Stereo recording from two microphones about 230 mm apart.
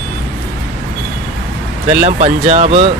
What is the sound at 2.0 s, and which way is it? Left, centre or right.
Speech, right.